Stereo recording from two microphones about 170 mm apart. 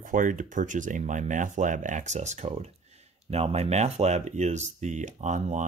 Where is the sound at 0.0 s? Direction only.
50° right (ahead or behind).